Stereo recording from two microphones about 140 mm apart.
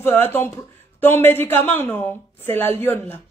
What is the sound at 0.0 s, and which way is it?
A woman's voice, 15° left (ahead or behind).